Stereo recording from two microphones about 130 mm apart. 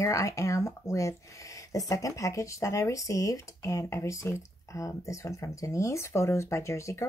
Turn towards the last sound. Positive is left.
turn(degrees=20)  # may be behind; listen again after turning